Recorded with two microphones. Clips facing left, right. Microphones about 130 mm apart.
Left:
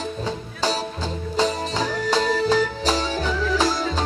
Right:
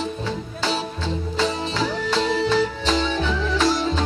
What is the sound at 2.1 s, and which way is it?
Music, 40° left (ahead or behind).